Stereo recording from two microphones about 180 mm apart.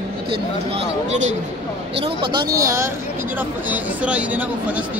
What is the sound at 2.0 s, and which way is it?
Speech, 25° right (ahead or behind).